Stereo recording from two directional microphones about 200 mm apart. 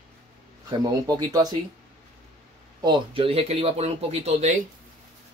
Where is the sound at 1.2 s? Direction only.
20° right (ahead or behind).